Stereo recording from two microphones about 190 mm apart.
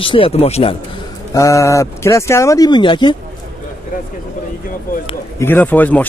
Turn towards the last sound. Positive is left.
turn(degrees=10)  # may be behind; listen again after turning